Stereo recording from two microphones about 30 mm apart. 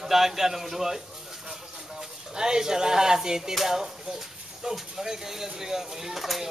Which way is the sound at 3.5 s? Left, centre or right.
Centre.